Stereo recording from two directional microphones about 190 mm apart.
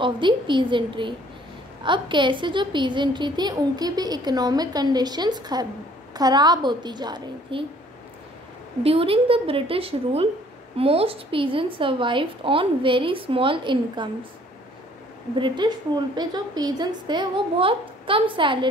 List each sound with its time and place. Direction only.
0.0 s a woman's voice: 25° right (ahead or behind)
8.8 s a woman's voice: 30° right (ahead or behind)
15.3 s a woman's voice: 25° right (ahead or behind)